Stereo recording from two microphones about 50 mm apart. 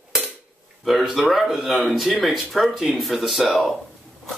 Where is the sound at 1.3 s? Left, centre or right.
Centre.